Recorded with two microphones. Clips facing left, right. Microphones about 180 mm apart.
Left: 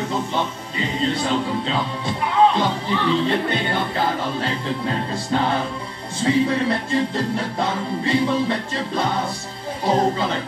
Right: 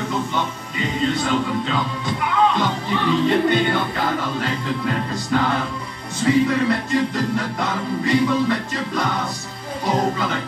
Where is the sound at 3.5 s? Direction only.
30° left (ahead or behind).